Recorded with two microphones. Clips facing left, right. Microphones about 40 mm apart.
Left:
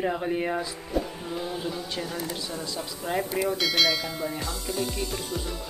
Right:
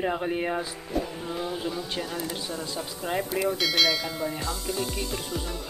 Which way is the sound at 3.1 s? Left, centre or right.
Centre.